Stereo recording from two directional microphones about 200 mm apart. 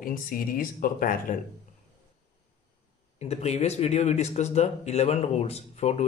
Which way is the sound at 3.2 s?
35° left (ahead or behind).